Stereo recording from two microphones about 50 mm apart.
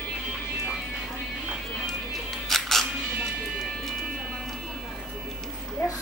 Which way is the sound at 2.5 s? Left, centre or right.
Centre.